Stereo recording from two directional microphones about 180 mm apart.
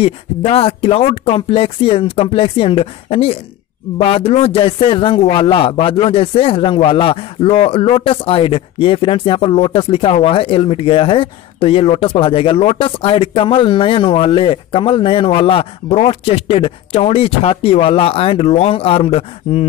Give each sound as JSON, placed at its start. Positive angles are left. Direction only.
{"t": 0.0, "sound": "a man's voice", "side_deg": 30}